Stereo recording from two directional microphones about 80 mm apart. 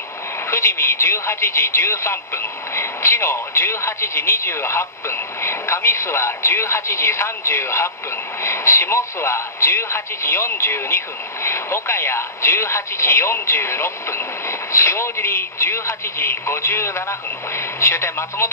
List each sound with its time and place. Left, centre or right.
0.5 s speech: left